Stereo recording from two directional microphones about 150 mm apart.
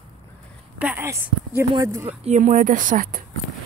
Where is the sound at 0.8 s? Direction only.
15° right (ahead or behind).